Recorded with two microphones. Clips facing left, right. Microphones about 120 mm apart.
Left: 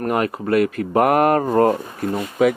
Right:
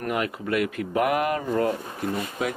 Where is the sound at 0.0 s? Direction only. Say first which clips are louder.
Left 6 dB; 40° left (ahead or behind).